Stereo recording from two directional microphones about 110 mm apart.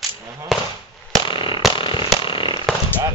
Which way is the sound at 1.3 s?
50° left (ahead or behind).